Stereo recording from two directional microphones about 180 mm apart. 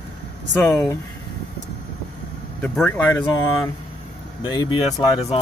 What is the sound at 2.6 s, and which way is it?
Speech, 10° left (ahead or behind).